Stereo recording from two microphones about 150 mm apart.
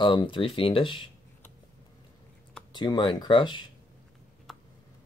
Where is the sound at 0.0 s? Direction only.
35° left (ahead or behind).